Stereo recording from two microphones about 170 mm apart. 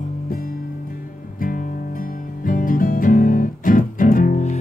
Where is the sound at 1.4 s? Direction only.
55° left (ahead or behind).